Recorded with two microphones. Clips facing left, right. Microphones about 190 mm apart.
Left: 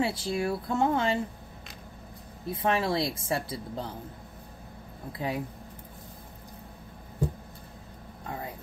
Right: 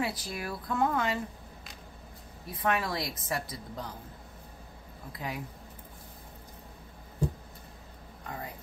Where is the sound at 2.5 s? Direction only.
25° left (ahead or behind).